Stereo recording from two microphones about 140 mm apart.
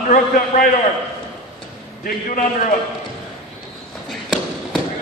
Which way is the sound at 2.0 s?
75° left (ahead or behind).